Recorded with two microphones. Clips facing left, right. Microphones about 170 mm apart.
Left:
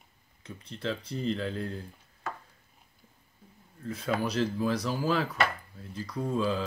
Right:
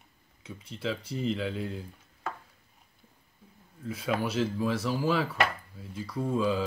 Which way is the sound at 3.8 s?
5° right (ahead or behind).